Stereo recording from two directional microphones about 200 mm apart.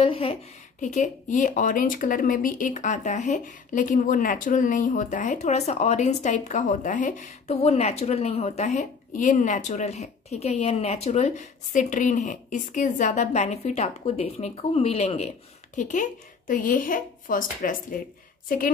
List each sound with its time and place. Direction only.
0.0 s speech: 30° left (ahead or behind)